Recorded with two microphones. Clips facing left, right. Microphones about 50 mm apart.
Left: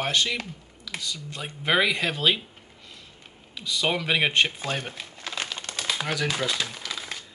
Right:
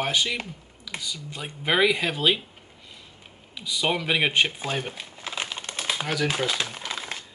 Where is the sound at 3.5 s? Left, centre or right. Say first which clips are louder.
Even; centre; by 7.2 s right.